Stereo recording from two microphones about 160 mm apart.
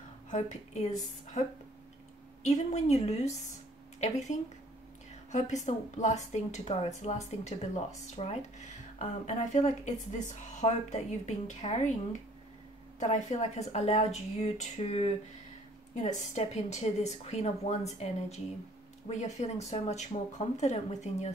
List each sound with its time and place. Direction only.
0.3 s a woman's voice: 50° left (ahead or behind)